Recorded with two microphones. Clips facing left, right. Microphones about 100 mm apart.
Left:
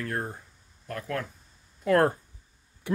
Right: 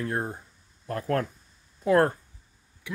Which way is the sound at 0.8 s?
35° right (ahead or behind).